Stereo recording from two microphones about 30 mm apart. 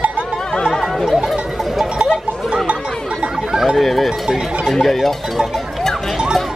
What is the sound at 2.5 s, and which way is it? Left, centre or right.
Chatter, right.